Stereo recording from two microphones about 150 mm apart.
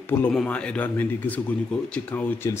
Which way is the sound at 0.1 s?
10° left (ahead or behind).